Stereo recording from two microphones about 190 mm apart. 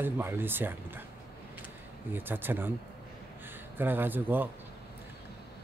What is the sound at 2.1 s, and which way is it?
Speech, 10° right (ahead or behind).